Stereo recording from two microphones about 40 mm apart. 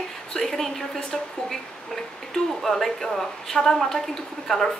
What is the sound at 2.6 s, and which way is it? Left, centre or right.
A woman's voice, centre.